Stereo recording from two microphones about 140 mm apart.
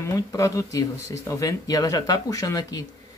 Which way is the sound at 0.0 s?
20° left (ahead or behind).